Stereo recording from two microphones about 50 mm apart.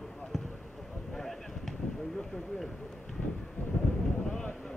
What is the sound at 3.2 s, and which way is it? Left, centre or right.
Vehicle, left.